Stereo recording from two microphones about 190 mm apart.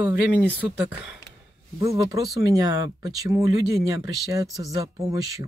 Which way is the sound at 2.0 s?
15° right (ahead or behind).